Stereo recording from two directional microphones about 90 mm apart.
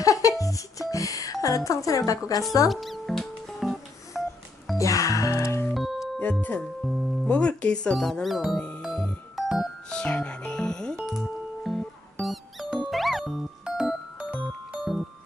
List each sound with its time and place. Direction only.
0.0 s music: 40° left (ahead or behind)
0.4 s a sound: 40° left (ahead or behind)
2.7 s music: centre (ahead or behind)
4.7 s music: 35° left (ahead or behind)
5.7 s music: centre (ahead or behind)
7.2 s speech: 10° left (ahead or behind)
8.5 s music: 10° left (ahead or behind)
8.8 s music: centre (ahead or behind)
9.8 s music: 10° left (ahead or behind)